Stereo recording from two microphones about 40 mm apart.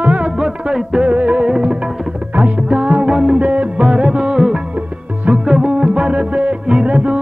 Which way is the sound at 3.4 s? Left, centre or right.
Right.